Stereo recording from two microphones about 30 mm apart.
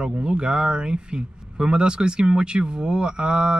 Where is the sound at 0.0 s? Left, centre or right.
Right.